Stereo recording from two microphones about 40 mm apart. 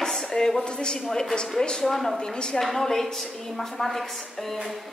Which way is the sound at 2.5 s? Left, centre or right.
Centre.